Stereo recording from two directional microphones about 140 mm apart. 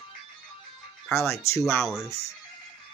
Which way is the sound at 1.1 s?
20° left (ahead or behind).